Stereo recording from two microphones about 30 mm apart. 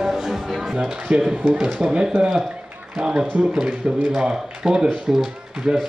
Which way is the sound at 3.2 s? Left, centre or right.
Right.